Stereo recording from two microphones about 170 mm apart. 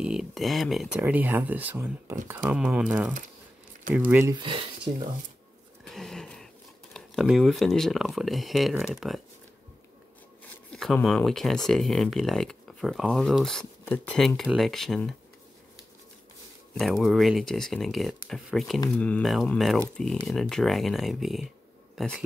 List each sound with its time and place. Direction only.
0.0 s speech: 5° right (ahead or behind)
4.3 s speech: 30° right (ahead or behind)
5.9 s speech: centre (ahead or behind)
10.7 s speech: centre (ahead or behind)
16.7 s speech: centre (ahead or behind)